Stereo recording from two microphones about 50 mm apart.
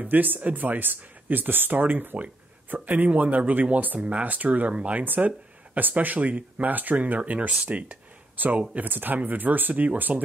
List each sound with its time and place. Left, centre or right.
0.1 s speech: right
5.0 s speech: right